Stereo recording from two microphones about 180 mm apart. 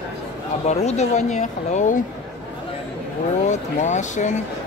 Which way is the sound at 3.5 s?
40° left (ahead or behind).